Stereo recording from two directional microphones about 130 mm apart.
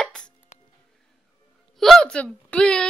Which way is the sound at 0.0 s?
5° left (ahead or behind).